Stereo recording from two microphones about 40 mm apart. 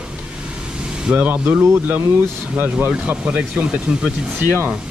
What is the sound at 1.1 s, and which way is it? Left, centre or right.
Speech, right.